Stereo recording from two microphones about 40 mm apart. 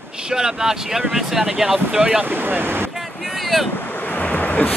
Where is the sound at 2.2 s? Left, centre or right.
Right.